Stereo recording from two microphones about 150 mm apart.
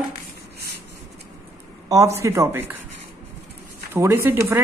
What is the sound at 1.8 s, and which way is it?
Speech, 20° right (ahead or behind).